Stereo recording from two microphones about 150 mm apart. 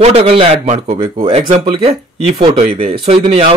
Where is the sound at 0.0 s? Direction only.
40° right (ahead or behind).